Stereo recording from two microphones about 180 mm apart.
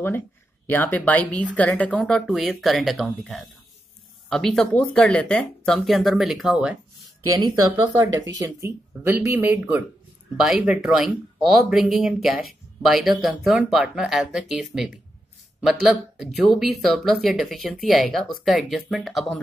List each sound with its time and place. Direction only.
0.7 s speech: 10° left (ahead or behind)
7.3 s speech: 20° right (ahead or behind); by 19.4 s centre (ahead or behind)